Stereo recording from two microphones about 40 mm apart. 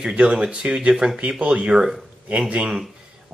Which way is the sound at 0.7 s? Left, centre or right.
Centre.